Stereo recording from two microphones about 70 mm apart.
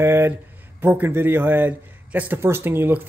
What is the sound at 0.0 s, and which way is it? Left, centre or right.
A man's voice, right.